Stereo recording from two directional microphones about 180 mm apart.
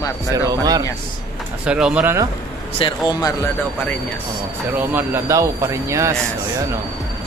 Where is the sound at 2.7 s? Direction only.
25° left (ahead or behind).